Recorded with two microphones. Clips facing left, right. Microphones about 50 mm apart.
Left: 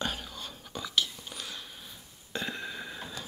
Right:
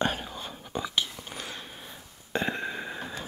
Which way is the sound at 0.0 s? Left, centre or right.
Right.